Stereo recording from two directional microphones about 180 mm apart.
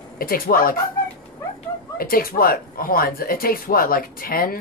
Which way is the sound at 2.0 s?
55° left (ahead or behind).